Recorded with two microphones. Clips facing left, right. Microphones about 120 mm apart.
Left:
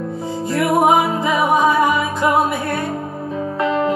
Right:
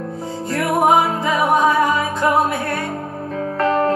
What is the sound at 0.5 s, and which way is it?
Music, 10° left (ahead or behind).